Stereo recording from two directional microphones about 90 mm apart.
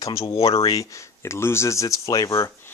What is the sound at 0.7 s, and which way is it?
Speech, 40° left (ahead or behind).